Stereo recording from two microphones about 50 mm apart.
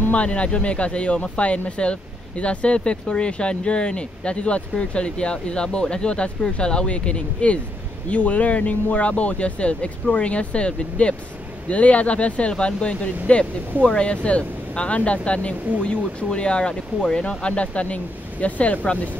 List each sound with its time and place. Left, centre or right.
0.1 s speech: left